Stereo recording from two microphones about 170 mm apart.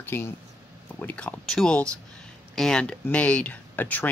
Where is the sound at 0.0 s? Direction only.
10° left (ahead or behind).